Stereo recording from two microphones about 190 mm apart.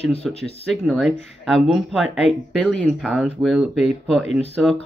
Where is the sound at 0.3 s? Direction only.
30° left (ahead or behind).